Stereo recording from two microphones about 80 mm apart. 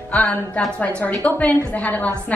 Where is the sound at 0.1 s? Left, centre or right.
Centre.